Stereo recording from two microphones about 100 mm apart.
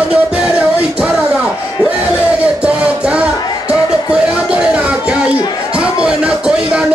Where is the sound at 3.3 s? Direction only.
35° left (ahead or behind).